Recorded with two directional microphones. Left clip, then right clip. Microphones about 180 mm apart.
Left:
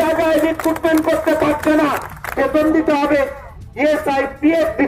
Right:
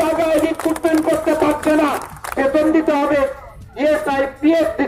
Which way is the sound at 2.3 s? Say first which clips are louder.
Even; 20° left (ahead or behind).